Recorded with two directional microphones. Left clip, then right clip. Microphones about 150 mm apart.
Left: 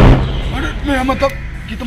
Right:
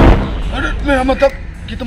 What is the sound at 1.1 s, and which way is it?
Speech, 30° right (ahead or behind).